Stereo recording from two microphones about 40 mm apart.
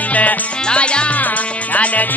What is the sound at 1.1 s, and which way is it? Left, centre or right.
Music, left.